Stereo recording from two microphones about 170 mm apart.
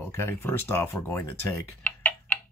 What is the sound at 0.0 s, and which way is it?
Speech, 15° left (ahead or behind).